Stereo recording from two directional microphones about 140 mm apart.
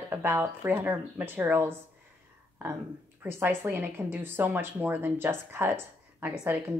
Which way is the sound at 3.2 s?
15° right (ahead or behind).